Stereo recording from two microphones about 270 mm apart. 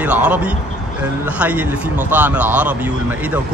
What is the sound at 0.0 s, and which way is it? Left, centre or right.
Speech, centre.